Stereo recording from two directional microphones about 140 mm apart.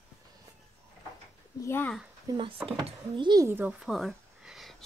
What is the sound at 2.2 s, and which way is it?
Speech, 35° right (ahead or behind).